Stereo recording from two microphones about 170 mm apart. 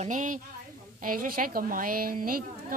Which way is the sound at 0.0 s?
50° right (ahead or behind).